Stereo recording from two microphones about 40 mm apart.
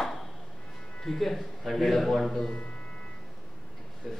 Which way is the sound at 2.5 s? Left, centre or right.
Left.